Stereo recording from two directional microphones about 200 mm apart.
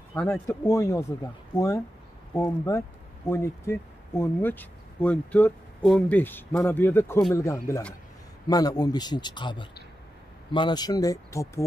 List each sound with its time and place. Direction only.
0.1 s speech: 5° left (ahead or behind)
0.5 s speech: 15° left (ahead or behind)